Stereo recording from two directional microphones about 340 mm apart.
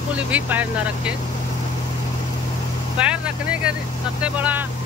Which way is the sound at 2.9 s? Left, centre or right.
Centre.